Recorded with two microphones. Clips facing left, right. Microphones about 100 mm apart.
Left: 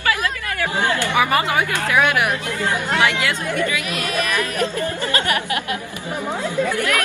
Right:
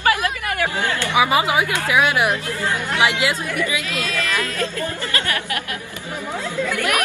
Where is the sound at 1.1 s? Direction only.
15° right (ahead or behind).